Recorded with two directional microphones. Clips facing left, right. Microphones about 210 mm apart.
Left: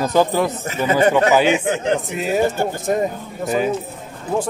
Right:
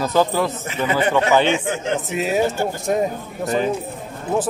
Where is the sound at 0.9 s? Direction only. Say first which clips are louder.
Left 4 dB; 45° left (ahead or behind).